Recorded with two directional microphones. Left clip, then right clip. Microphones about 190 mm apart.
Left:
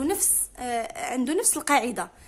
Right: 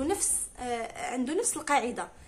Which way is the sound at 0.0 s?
50° left (ahead or behind).